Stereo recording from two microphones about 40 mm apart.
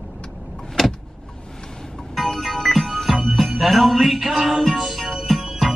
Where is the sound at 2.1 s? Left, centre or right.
Centre.